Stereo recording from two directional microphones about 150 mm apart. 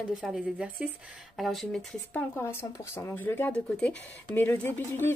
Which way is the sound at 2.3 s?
20° left (ahead or behind).